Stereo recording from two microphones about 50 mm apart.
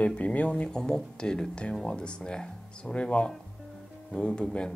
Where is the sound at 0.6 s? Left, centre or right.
Centre.